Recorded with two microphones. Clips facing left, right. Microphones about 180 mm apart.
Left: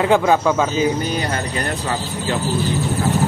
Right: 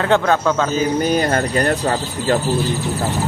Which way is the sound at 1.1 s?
50° right (ahead or behind).